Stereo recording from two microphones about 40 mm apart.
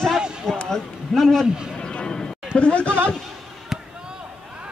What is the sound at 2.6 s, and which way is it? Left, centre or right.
Speech, left.